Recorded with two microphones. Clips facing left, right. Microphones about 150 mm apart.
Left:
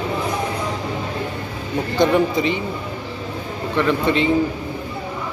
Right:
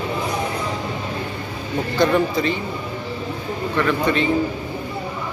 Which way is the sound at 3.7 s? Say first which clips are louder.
Left 2 dB; 20° left (ahead or behind).